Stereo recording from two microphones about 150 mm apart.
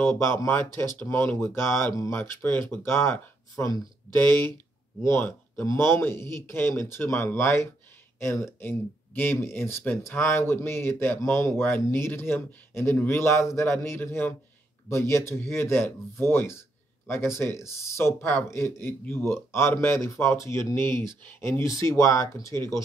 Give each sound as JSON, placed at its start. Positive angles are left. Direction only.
{"t": 0.0, "sound": "speech", "side_deg": 15}